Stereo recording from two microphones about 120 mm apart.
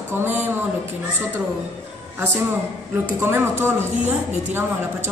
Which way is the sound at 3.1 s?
20° right (ahead or behind).